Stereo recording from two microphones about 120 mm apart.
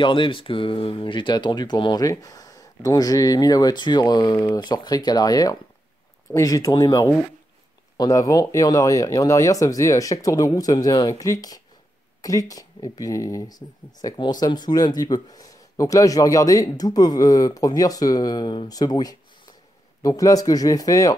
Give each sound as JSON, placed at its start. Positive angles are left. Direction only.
{"t": 0.0, "sound": "speech", "side_deg": 45}